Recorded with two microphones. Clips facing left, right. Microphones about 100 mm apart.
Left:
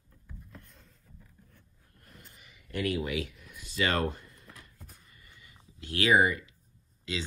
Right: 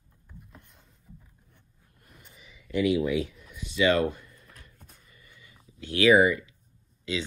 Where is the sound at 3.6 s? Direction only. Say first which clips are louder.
Right 6 dB; 40° left (ahead or behind).